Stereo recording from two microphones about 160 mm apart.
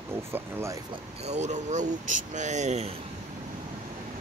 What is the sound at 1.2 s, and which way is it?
Speech, 45° right (ahead or behind).